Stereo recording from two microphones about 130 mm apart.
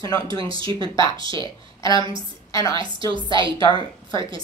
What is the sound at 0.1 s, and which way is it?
Speech, 30° left (ahead or behind).